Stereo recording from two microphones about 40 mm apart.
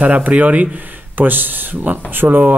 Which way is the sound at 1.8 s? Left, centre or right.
Right.